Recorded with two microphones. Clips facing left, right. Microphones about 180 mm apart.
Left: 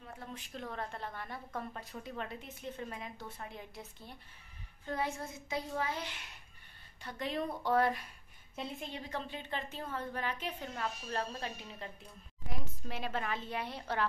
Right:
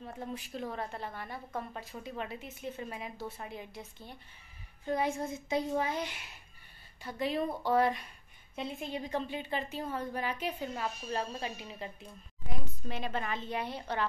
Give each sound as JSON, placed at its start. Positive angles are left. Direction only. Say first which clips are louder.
{"t": 0.2, "sound": "a woman's voice", "louder": "right 7 dB", "side_deg": -15}
{"t": 0.6, "sound": "a woman's voice", "louder": "right 2 dB", "side_deg": -5}
{"t": 4.8, "sound": "a woman's voice", "louder": "right 5 dB", "side_deg": -15}
{"t": 8.9, "sound": "a woman's voice", "louder": "right 6 dB", "side_deg": -15}
{"t": 12.4, "sound": "a woman's voice", "louder": "right 3 dB", "side_deg": 5}